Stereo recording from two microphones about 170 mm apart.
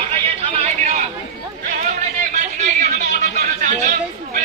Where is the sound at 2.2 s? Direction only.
50° right (ahead or behind).